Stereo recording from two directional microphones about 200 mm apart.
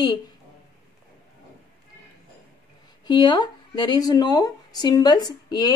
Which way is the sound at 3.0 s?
20° left (ahead or behind).